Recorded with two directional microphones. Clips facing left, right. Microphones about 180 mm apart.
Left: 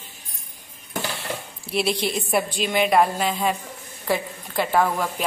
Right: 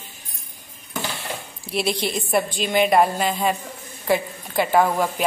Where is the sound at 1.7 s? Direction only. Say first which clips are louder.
Even; centre (ahead or behind).